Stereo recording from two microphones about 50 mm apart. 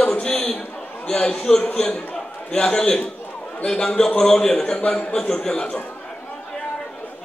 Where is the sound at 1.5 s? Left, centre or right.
Left.